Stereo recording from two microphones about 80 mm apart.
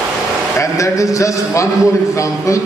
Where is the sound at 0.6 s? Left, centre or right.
Left.